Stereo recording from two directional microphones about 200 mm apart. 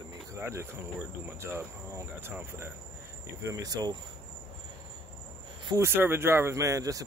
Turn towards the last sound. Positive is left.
turn(degrees=-15)  # may be behind; listen again after turning